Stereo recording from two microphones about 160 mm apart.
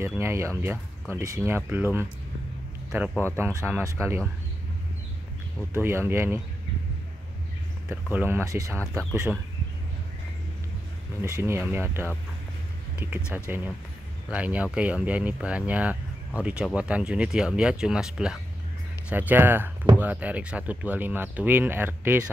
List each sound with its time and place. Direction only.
0.0 s speech: 15° right (ahead or behind)
3.3 s speech: 15° right (ahead or behind)
5.7 s speech: 15° right (ahead or behind)
7.9 s speech: 10° right (ahead or behind)
11.2 s speech: 20° right (ahead or behind)